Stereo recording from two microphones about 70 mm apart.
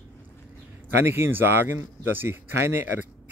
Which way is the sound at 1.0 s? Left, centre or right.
Right.